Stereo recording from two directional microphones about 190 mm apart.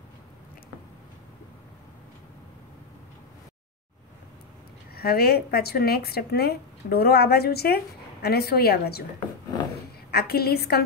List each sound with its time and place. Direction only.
4.9 s speech: 55° left (ahead or behind)
10.1 s speech: 55° left (ahead or behind)